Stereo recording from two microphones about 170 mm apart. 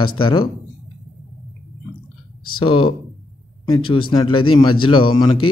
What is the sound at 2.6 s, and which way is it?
Speech, 30° left (ahead or behind).